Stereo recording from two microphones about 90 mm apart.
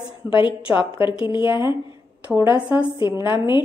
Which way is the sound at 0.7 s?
70° left (ahead or behind).